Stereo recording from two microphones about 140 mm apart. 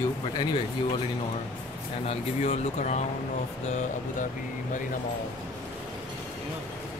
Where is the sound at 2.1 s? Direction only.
45° left (ahead or behind).